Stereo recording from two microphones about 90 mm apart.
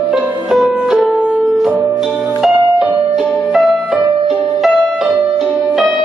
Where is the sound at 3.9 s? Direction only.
15° right (ahead or behind).